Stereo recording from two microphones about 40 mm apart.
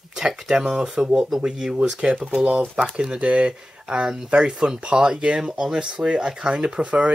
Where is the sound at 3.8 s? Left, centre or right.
Centre.